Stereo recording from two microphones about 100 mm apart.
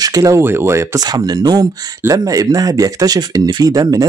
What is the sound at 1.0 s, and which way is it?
Speech, 45° right (ahead or behind).